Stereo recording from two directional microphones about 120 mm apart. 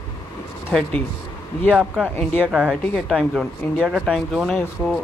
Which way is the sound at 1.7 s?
5° right (ahead or behind).